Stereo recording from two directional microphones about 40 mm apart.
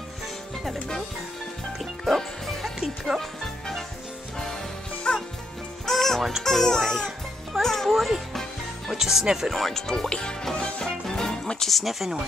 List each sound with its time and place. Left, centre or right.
2.0 s music: centre
5.1 s music: left
5.9 s music: centre
6.4 s speech: centre
7.6 s music: centre
7.9 s speech: centre
8.3 s music: centre
8.9 s speech: centre
9.5 s speech: centre; by 10.3 s left
10.4 s music: centre
11.7 s speech: centre